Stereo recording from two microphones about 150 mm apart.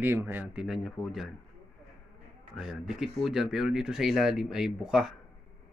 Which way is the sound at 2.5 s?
5° right (ahead or behind).